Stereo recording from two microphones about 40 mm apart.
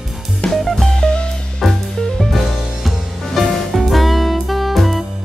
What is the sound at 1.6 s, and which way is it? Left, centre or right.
Music, centre.